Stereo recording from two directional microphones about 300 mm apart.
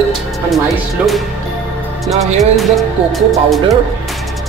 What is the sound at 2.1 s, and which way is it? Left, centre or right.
Music, centre.